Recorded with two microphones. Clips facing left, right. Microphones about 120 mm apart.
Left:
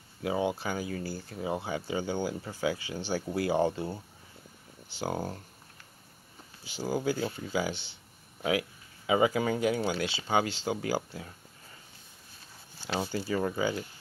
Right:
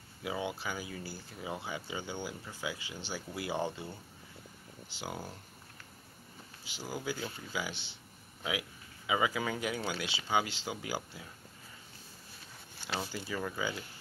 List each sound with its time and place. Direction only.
0.2 s speech: 35° left (ahead or behind)
0.8 s speech: 55° left (ahead or behind)
1.3 s speech: 30° left (ahead or behind)
3.3 s speech: 35° left (ahead or behind)
5.0 s speech: 40° left (ahead or behind)
6.8 s speech: 30° left (ahead or behind)
13.1 s speech: 35° left (ahead or behind)